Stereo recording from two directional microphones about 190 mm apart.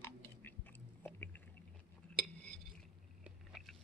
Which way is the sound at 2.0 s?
5° left (ahead or behind).